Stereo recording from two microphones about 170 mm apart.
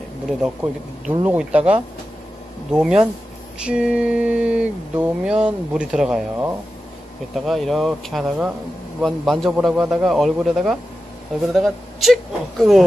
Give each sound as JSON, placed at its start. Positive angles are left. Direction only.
{"t": 1.0, "sound": "speech", "side_deg": -5}
{"t": 2.7, "sound": "mantra", "side_deg": -5}